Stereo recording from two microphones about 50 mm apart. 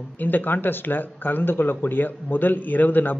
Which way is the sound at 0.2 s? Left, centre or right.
Left.